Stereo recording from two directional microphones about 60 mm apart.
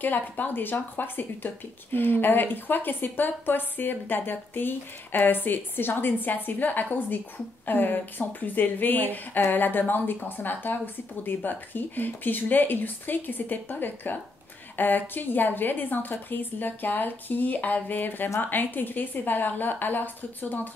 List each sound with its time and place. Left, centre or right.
0.0 s speech: left